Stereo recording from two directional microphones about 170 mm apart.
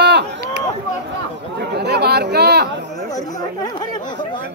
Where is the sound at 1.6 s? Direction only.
75° right (ahead or behind).